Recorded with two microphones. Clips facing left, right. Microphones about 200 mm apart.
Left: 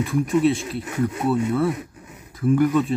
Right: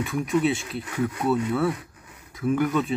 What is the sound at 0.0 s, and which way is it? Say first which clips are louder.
Speech: left 4 dB; centre (ahead or behind).